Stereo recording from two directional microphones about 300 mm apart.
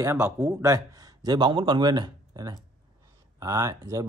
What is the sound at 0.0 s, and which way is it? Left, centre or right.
A man's voice, centre.